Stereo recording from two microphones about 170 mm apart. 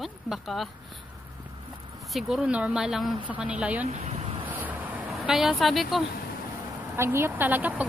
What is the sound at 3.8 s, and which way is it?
Speech, 40° right (ahead or behind).